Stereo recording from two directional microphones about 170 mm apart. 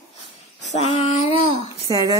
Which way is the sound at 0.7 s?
35° left (ahead or behind).